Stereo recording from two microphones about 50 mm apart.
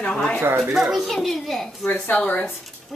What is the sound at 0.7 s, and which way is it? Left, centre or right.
Speech, centre.